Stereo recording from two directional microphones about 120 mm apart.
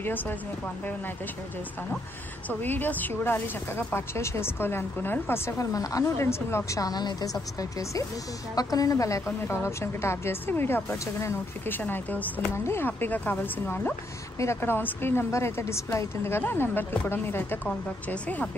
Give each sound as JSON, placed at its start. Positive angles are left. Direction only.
{"t": 0.0, "sound": "speech", "side_deg": 15}
{"t": 2.6, "sound": "speech", "side_deg": 15}
{"t": 5.6, "sound": "a woman's voice", "side_deg": 30}
{"t": 8.5, "sound": "a woman's voice", "side_deg": 30}